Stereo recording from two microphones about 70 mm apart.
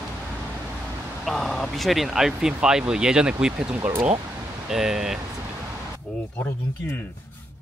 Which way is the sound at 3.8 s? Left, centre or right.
Right.